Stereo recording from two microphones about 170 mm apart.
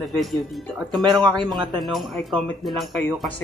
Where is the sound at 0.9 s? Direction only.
25° right (ahead or behind).